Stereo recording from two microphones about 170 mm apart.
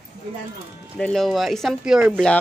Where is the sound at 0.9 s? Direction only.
5° left (ahead or behind).